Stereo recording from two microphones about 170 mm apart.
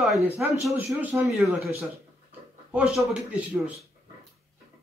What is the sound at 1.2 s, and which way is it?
Speech, centre (ahead or behind).